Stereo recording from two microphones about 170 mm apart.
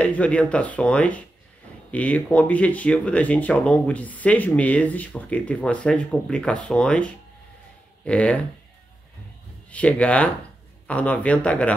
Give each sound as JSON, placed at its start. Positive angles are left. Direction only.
{"t": 0.0, "sound": "speech", "side_deg": 5}
{"t": 9.7, "sound": "speech", "side_deg": 10}